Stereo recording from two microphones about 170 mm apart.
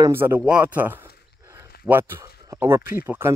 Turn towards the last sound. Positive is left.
turn(degrees=-15)  # may be behind; listen again after turning